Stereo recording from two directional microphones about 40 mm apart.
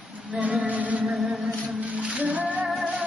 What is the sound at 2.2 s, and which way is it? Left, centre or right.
Music, right.